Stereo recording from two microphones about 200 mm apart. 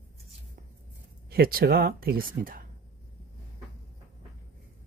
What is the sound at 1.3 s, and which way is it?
Speech, 50° right (ahead or behind).